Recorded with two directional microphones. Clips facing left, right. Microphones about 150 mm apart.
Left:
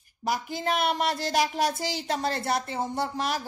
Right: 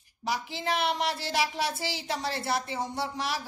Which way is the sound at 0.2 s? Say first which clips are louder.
Left 3 dB; 50° left (ahead or behind).